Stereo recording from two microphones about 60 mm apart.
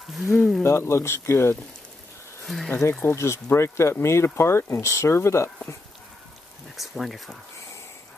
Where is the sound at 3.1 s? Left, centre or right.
Left.